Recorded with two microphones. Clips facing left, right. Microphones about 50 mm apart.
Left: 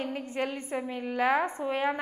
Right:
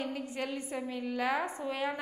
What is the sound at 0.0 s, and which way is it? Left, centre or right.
A woman's voice, left.